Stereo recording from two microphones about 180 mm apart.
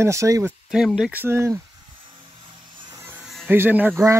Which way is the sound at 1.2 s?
15° right (ahead or behind).